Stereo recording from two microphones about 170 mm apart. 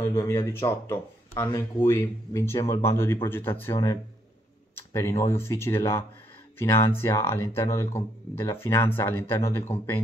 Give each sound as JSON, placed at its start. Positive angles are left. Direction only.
{"t": 0.0, "sound": "speech", "side_deg": 15}